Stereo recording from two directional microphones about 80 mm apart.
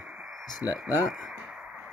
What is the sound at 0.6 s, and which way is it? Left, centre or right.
Speech, left.